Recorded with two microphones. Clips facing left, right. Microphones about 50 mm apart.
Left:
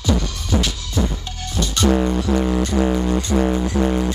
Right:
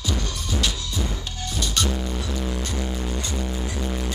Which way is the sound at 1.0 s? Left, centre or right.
Left.